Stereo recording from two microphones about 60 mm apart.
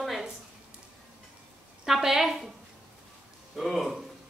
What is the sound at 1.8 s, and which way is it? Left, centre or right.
Speech, centre.